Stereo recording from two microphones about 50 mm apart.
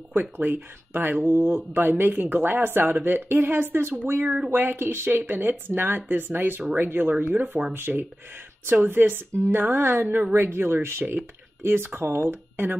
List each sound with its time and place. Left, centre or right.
0.1 s speech: right
7.7 s speech: right